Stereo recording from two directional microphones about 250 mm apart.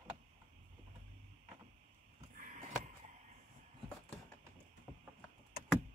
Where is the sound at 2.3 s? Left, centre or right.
Right.